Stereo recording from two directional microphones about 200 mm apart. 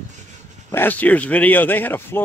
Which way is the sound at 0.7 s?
10° left (ahead or behind).